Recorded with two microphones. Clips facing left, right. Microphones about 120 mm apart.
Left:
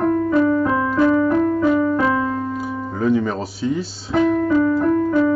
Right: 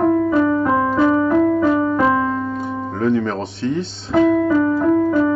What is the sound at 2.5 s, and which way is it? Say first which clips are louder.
Music: right 1 dB; 5° left (ahead or behind).